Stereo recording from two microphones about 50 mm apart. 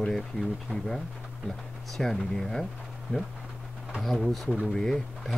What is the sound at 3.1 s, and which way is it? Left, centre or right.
Speech, left.